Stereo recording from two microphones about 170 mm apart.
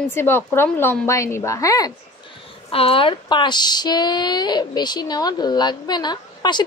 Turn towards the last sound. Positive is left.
turn(degrees=25)  # may be behind; listen again after turning